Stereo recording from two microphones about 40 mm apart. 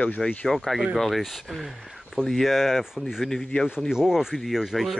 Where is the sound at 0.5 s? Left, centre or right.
Centre.